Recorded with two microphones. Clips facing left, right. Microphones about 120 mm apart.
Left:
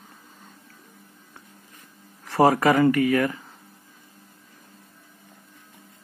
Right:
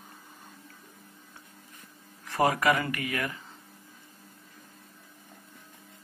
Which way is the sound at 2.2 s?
30° left (ahead or behind).